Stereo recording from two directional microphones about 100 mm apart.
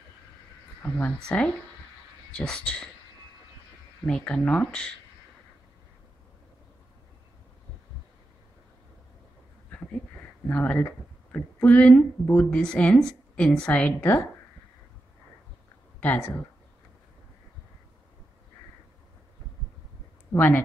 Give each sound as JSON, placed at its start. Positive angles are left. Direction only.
{"t": 0.8, "sound": "speech", "side_deg": 20}
{"t": 4.0, "sound": "speech", "side_deg": 10}
{"t": 10.5, "sound": "speech", "side_deg": 15}
{"t": 16.0, "sound": "speech", "side_deg": 20}
{"t": 20.3, "sound": "speech", "side_deg": 20}